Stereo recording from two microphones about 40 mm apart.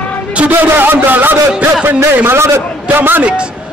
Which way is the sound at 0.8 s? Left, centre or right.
Right.